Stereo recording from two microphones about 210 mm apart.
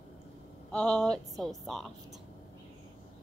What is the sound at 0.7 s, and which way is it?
Speech, 5° left (ahead or behind).